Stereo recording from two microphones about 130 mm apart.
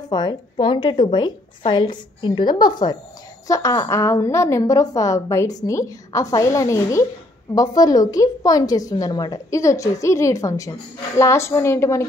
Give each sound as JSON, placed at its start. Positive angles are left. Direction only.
{"t": 0.1, "sound": "a woman's voice", "side_deg": 30}